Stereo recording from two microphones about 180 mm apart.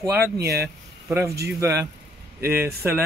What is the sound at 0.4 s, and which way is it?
Speech, 60° right (ahead or behind).